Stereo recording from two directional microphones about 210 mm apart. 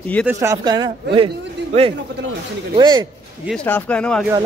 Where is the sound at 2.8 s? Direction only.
20° right (ahead or behind).